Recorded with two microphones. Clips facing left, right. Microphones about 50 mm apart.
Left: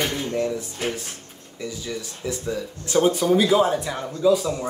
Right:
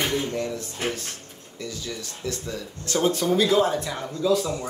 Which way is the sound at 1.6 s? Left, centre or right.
Centre.